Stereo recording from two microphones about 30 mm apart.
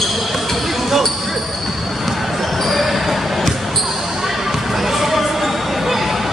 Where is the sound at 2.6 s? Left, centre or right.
Centre.